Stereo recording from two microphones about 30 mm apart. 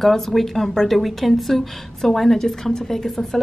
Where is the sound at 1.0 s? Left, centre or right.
Centre.